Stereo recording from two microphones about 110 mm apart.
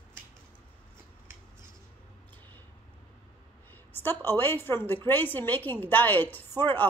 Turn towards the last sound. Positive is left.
turn(degrees=20)  # may be behind; listen again after turning